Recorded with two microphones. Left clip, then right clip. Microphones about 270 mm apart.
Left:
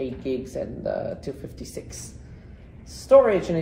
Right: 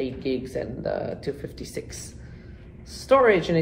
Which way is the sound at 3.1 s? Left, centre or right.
Right.